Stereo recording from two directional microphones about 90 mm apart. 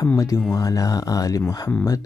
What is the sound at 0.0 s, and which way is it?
Speech, 35° left (ahead or behind).